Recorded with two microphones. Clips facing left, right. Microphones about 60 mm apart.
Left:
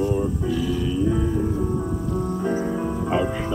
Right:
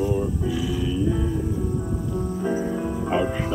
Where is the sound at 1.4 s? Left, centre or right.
Left.